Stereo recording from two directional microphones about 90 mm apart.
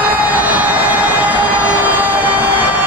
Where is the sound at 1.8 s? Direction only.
20° right (ahead or behind).